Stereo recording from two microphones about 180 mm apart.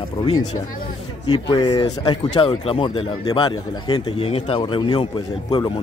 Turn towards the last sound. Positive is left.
turn(degrees=25)  # may be behind; listen again after turning